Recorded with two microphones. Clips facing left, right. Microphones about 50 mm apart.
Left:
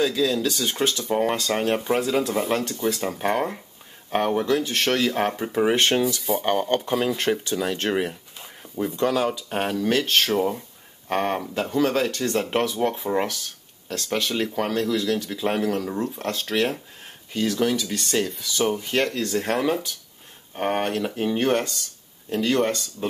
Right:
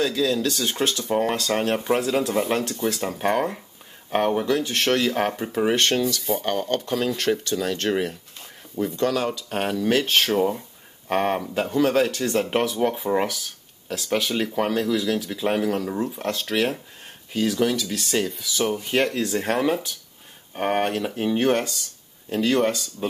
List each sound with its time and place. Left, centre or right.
0.0 s speech: centre
5.9 s speech: centre